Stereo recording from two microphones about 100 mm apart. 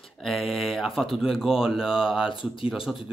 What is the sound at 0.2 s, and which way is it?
Speech, centre (ahead or behind).